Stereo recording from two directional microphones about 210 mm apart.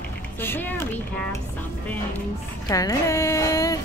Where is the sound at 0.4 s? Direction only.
10° left (ahead or behind).